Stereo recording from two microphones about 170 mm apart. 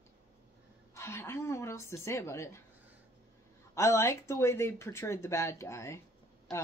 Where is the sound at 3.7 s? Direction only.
15° left (ahead or behind).